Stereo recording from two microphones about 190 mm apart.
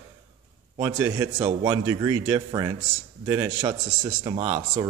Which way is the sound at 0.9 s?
20° right (ahead or behind).